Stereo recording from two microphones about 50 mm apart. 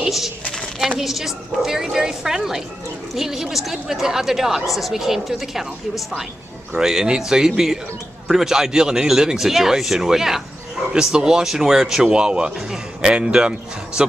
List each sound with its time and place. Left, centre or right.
0.0 s a sound: centre
0.7 s a woman's voice: centre
6.7 s a woman's voice: centre